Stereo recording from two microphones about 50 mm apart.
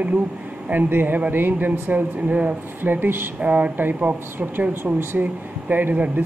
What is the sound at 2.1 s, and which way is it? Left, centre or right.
Speech, right.